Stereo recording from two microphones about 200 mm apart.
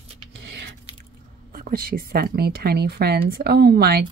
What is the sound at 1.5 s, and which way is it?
Speech, 45° right (ahead or behind).